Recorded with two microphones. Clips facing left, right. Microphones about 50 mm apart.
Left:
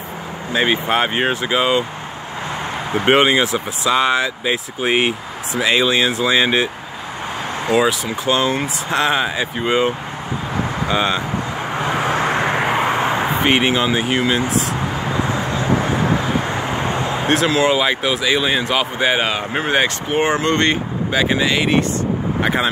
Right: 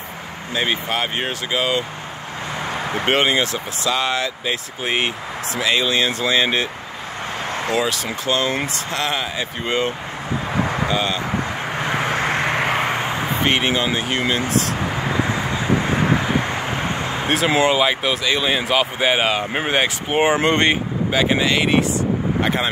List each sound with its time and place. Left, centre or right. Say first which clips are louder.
0.6 s speech: left 5 dB; left
2.9 s speech: left 5 dB; centre
11.9 s vehicle: left 2 dB; centre
13.0 s a sound: left 4 dB; centre
13.4 s speech: left 1 dB; centre
15.8 s vehicle: left 1 dB; centre
17.6 s speech: left 1 dB; centre
21.1 s speech: left 1 dB; centre